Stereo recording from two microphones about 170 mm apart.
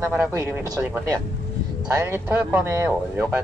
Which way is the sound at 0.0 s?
15° right (ahead or behind).